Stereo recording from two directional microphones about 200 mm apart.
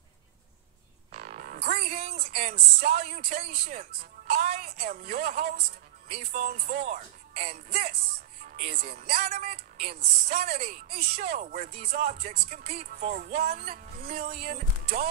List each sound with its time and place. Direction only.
1.1 s a sound: 40° right (ahead or behind)
2.0 s speech: 30° right (ahead or behind)
2.3 s speech: 40° right (ahead or behind)
4.3 s music: 40° right (ahead or behind)
6.0 s music: 30° right (ahead or behind)
6.7 s speech: 40° right (ahead or behind)
8.5 s music: 40° right (ahead or behind)
10.4 s speech: 40° right (ahead or behind)
11.9 s music: 40° right (ahead or behind)
14.3 s speech: 35° right (ahead or behind)